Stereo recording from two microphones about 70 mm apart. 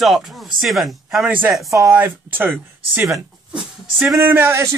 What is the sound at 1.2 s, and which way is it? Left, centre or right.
Speech, right.